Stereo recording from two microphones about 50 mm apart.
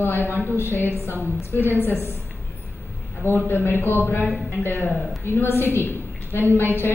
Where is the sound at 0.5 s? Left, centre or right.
Left.